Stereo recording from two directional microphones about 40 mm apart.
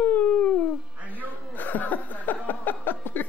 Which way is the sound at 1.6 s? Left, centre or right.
Left.